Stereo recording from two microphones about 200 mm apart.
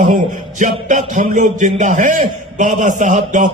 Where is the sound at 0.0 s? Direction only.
40° right (ahead or behind).